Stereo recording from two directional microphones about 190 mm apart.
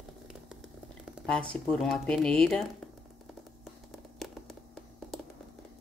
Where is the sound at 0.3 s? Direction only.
5° right (ahead or behind).